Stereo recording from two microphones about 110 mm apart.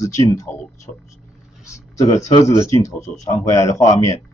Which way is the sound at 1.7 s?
30° left (ahead or behind).